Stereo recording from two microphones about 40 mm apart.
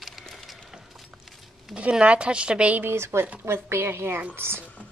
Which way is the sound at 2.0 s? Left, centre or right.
Right.